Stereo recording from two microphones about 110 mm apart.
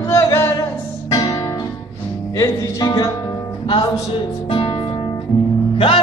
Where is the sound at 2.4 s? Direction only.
35° left (ahead or behind).